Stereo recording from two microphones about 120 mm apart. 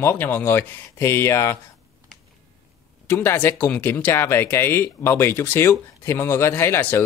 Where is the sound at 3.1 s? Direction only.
15° left (ahead or behind).